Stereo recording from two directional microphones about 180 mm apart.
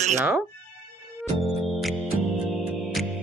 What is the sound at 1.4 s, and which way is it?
Music, centre (ahead or behind).